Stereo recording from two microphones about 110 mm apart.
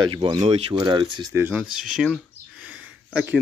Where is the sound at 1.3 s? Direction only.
20° right (ahead or behind).